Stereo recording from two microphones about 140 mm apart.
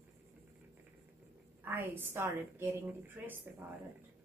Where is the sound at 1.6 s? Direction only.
15° right (ahead or behind).